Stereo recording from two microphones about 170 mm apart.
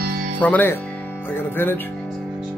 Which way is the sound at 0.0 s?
60° right (ahead or behind).